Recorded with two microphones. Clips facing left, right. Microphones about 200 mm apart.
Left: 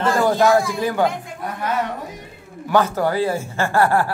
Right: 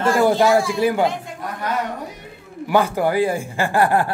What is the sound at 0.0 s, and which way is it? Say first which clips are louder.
Speech: right 1 dB; 10° right (ahead or behind).